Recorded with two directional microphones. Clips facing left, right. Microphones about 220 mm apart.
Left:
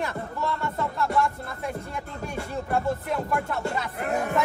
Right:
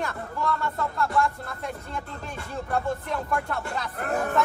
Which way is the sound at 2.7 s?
5° left (ahead or behind).